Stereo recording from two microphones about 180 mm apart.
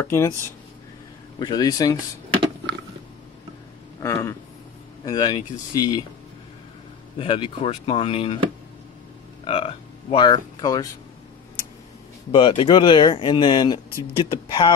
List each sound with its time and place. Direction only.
0.0 s speech: 15° left (ahead or behind)
1.4 s speech: 20° left (ahead or behind)
4.0 s speech: 15° left (ahead or behind)
7.2 s speech: 30° left (ahead or behind)
9.4 s speech: 30° left (ahead or behind)
12.3 s speech: 30° left (ahead or behind)